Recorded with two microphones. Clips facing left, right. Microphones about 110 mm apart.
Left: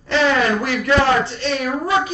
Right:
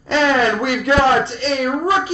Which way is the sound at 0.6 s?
20° right (ahead or behind).